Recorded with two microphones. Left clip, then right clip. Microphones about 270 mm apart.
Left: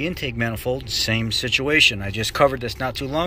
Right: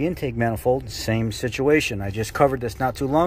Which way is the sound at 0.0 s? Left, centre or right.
Centre.